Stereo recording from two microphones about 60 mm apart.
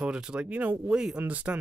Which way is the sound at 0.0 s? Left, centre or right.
Centre.